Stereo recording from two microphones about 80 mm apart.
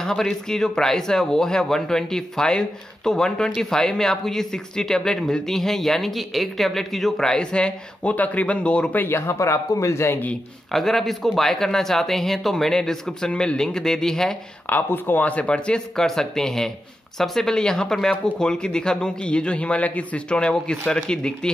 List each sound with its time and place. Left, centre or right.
0.0 s speech: centre
9.0 s speech: left
10.7 s speech: centre
14.7 s speech: left; by 21.5 s centre